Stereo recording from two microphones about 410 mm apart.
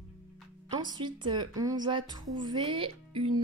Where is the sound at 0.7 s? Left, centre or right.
Centre.